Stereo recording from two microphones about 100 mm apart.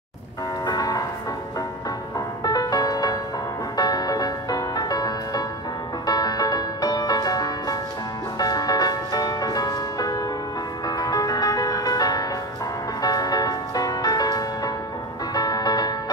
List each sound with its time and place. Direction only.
0.7 s music: 40° left (ahead or behind)
2.1 s music: 40° left (ahead or behind)